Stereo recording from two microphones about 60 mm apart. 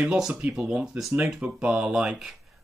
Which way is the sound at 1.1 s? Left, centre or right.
Centre.